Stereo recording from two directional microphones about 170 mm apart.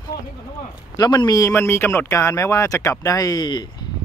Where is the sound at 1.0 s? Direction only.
25° left (ahead or behind).